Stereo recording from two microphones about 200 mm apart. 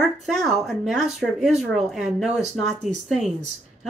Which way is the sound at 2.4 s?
35° right (ahead or behind).